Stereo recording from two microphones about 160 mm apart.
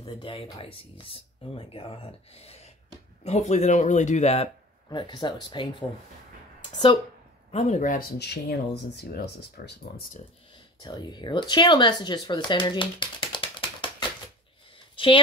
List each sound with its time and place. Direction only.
0.0 s speech: 35° left (ahead or behind)
4.8 s speech: 25° left (ahead or behind)
7.5 s speech: 45° left (ahead or behind)
8.2 s speech: 90° left
10.5 s speech: 25° left (ahead or behind)
15.0 s speech: 35° left (ahead or behind)